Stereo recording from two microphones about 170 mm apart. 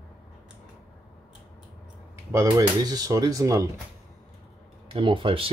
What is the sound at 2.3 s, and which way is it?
Speech, 20° right (ahead or behind).